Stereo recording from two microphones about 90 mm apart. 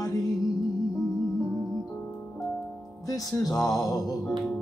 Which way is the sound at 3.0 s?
45° left (ahead or behind).